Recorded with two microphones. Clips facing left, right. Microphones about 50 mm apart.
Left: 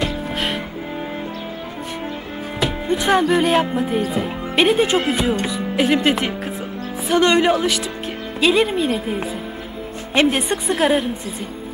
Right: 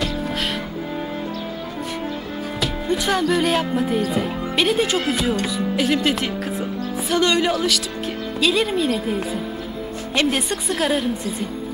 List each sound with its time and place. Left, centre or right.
0.1 s music: centre
2.6 s speech: centre